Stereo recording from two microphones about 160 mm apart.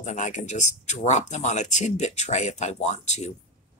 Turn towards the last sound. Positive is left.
turn(degrees=45)  # may be behind; listen again after turning